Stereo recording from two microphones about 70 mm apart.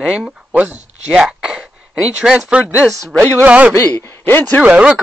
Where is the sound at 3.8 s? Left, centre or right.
Left.